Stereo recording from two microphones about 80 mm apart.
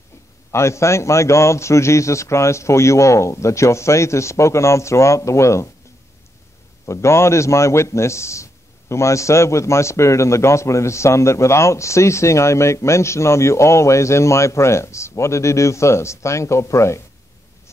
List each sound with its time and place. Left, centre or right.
0.5 s a man's voice: left
6.9 s a man's voice: left